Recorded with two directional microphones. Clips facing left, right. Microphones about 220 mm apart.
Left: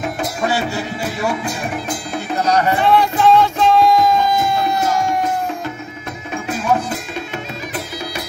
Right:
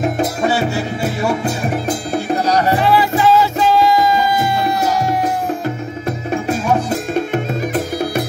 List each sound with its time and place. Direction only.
1.4 s music: 40° right (ahead or behind)
2.8 s music: 5° right (ahead or behind)
6.0 s music: 40° right (ahead or behind)
7.7 s music: 55° right (ahead or behind)